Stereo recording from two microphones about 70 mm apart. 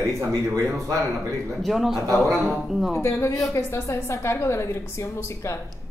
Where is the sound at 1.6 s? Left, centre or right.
Centre.